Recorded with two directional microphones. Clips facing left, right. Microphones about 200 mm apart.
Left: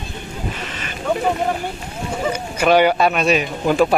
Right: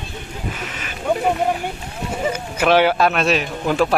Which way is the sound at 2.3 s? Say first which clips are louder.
Left 1 dB; 5° right (ahead or behind).